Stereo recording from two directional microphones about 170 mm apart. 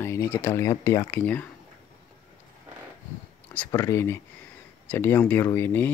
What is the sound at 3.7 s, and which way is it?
Speech, 15° left (ahead or behind).